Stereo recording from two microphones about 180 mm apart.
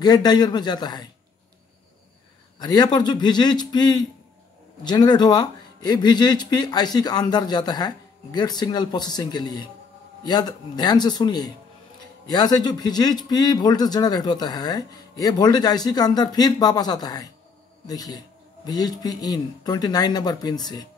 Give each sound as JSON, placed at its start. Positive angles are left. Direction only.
{"t": 0.0, "sound": "speech", "side_deg": 20}
{"t": 2.6, "sound": "speech", "side_deg": 25}